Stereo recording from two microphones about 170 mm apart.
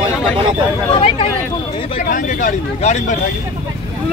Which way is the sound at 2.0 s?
50° left (ahead or behind).